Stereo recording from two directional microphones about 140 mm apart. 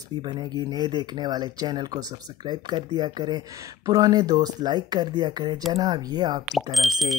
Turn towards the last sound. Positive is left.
turn(degrees=0)  # may be behind; listen again after turning